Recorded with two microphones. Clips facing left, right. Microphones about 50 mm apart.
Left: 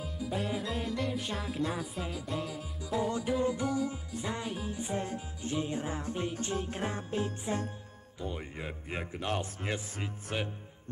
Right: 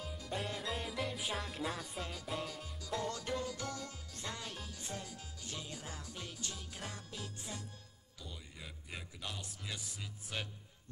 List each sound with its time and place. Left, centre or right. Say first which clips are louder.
0.0 s music: left 6 dB; centre; by 5.0 s left
5.0 s speech: left 11 dB; left